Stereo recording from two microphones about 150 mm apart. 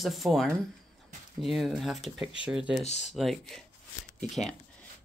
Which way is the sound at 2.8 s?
50° left (ahead or behind).